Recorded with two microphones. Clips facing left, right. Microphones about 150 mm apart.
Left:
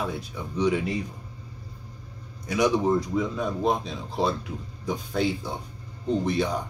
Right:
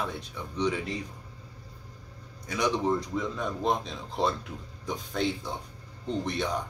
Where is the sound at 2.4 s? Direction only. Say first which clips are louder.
Left 5 dB; 10° left (ahead or behind).